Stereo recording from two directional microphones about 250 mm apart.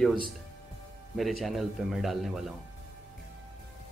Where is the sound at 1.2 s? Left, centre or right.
Centre.